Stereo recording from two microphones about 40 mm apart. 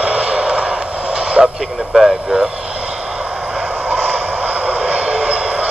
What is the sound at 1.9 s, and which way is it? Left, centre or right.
Speech, centre.